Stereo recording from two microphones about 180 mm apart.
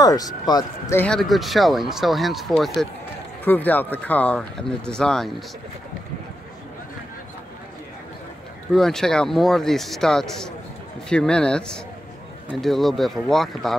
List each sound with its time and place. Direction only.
0.0 s speech: 20° left (ahead or behind)
0.9 s speech: 5° left (ahead or behind)
8.7 s speech: 5° left (ahead or behind)